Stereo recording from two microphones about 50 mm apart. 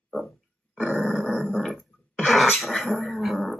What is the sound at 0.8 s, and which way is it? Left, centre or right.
Grunt, centre.